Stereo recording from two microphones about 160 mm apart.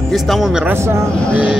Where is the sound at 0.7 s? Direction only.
15° right (ahead or behind).